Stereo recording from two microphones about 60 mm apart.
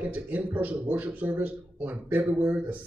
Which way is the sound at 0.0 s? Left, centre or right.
Right.